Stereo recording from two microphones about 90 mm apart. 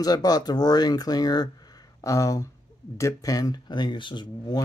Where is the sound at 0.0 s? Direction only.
45° left (ahead or behind).